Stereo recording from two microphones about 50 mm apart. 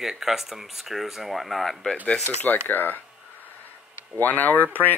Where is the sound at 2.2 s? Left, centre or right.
Left.